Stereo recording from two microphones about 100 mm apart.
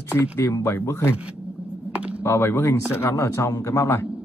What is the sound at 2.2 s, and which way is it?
Speech, 25° left (ahead or behind).